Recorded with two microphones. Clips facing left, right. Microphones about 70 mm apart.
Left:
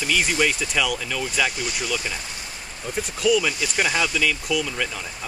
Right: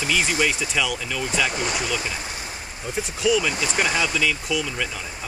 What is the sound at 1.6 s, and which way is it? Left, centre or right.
Speech, right.